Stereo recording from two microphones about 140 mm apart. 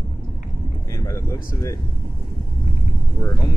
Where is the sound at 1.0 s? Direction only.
20° left (ahead or behind).